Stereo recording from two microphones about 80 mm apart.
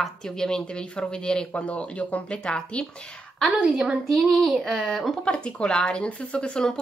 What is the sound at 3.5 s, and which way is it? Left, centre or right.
Speech, centre.